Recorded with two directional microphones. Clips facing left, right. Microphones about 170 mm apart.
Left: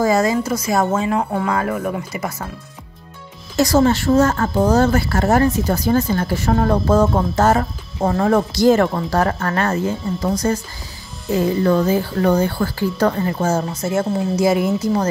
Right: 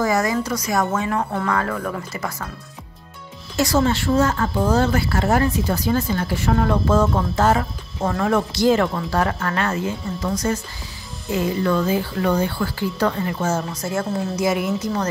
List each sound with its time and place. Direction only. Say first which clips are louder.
0.0 s speech: left 4 dB; 25° left (ahead or behind)
3.5 s speech: left 4 dB; 40° left (ahead or behind)